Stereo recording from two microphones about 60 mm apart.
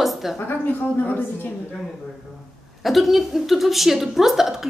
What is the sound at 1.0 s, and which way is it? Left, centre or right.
Speech, left.